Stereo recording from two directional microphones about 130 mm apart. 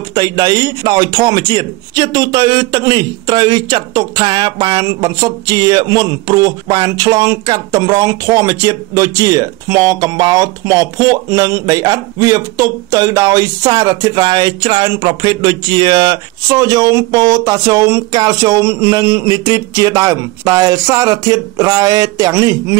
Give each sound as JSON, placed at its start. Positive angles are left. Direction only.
{"t": 0.1, "sound": "a man's voice", "side_deg": -35}